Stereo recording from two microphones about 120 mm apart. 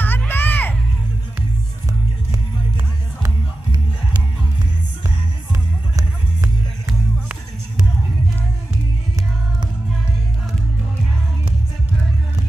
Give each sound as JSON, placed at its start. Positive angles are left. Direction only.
{"t": 0.0, "sound": "music", "side_deg": 15}
{"t": 5.5, "sound": "music", "side_deg": -25}